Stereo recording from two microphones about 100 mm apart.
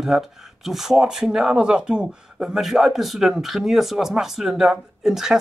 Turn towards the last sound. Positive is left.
turn(degrees=-5)  # may be behind; listen again after turning